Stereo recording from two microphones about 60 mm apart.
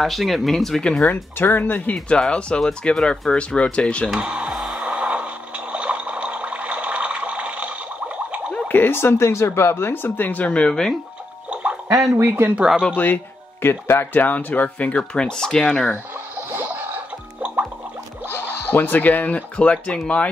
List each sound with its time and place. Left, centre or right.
0.0 s speech: centre
1.1 s speech: left
2.0 s speech: centre
4.2 s speech: centre
4.5 s a sound: centre
8.6 s speech: left
10.5 s speech: centre
11.5 s a sound: right
12.2 s speech: right
12.9 s speech: left
14.1 s speech: left
16.5 s a sound: right
18.3 s speech: left